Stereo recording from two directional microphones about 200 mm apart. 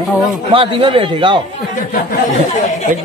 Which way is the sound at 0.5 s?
25° right (ahead or behind).